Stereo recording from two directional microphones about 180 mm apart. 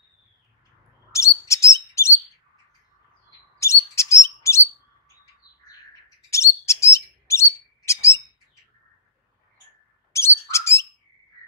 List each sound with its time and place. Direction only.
1.1 s bird: 15° left (ahead or behind)
3.5 s bird: 15° left (ahead or behind)
6.3 s bird: 15° left (ahead or behind)
10.1 s bird: 15° left (ahead or behind)